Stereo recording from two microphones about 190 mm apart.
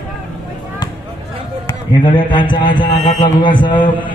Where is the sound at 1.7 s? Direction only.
25° left (ahead or behind).